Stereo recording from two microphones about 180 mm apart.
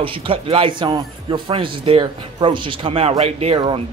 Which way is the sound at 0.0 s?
30° right (ahead or behind).